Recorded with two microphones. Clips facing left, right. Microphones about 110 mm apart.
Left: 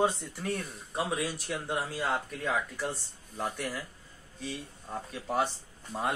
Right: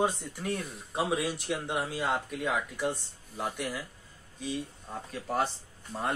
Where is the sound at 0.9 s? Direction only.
20° right (ahead or behind).